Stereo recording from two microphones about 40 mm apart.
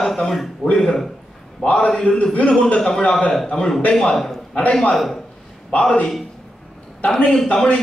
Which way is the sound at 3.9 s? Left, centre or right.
Centre.